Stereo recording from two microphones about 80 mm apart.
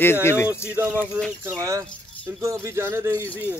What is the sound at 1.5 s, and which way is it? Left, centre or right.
Speech, right.